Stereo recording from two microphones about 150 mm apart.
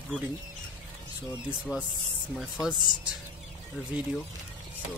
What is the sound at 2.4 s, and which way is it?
Speech, 5° right (ahead or behind).